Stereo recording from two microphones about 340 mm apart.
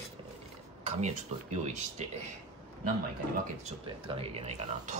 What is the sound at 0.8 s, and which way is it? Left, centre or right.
Speech, centre.